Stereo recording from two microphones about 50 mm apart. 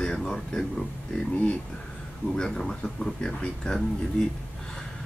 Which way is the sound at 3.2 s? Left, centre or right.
Centre.